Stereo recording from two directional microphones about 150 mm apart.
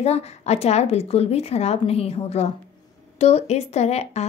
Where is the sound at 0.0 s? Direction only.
45° left (ahead or behind).